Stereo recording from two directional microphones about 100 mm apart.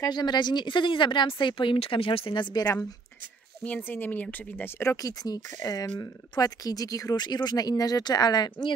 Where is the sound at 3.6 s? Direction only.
15° left (ahead or behind).